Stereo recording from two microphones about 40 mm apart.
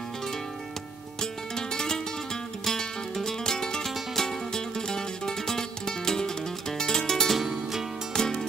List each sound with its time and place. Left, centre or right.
1.2 s music: centre
7.3 s music: centre
8.1 s music: centre